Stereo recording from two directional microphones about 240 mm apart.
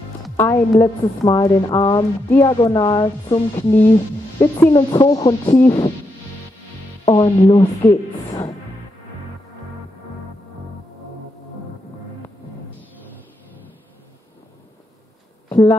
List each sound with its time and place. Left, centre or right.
0.2 s a woman's voice: centre
7.1 s speech: centre